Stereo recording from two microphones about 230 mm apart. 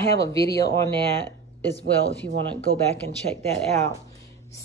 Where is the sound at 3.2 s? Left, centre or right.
Right.